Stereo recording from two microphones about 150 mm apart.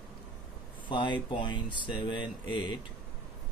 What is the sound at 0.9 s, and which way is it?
Speech, 30° left (ahead or behind).